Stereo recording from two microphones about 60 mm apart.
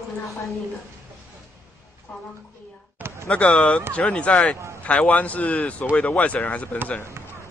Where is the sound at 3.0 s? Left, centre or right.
Right.